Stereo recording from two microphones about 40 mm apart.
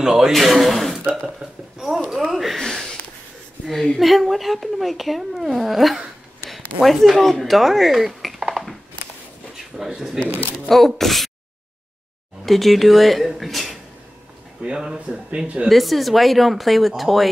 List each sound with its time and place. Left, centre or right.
0.0 s speech: centre
0.3 s a woman's voice: centre
1.4 s speech: right
2.0 s a woman's voice: centre
4.0 s a woman's voice: centre
9.8 s speech: centre
10.7 s a woman's voice: centre
12.4 s a woman's voice: centre
14.6 s speech: right
15.7 s a woman's voice: centre